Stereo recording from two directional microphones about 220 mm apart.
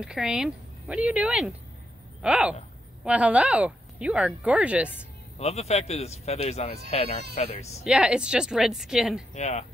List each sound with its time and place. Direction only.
0.0 s speech: 5° right (ahead or behind)
5.4 s speech: 30° left (ahead or behind)
7.8 s speech: 5° right (ahead or behind)
9.3 s speech: 30° left (ahead or behind)